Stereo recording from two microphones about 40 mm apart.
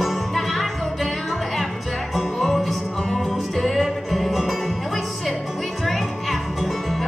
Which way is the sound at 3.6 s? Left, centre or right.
Centre.